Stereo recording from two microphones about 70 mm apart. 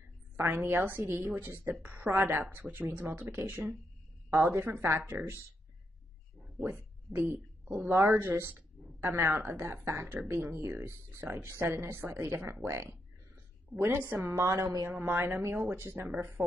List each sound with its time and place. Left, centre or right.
0.4 s speech: right
6.6 s speech: right
14.3 s a woman's voice: right
14.9 s speech: right